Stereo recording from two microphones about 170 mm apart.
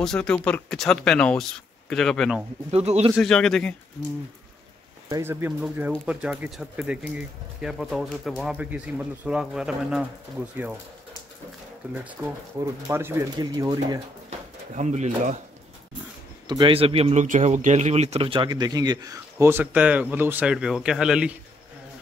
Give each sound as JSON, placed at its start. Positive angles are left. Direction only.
{"t": 0.0, "sound": "speech", "side_deg": 5}
{"t": 2.7, "sound": "speech", "side_deg": -40}
{"t": 3.2, "sound": "speech", "side_deg": 5}
{"t": 5.1, "sound": "speech", "side_deg": -15}
{"t": 12.1, "sound": "a man's voice", "side_deg": -15}
{"t": 14.8, "sound": "speech", "side_deg": -40}
{"t": 16.4, "sound": "a man's voice", "side_deg": -25}